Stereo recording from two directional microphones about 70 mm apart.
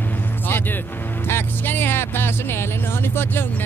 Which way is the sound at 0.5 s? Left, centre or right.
Left.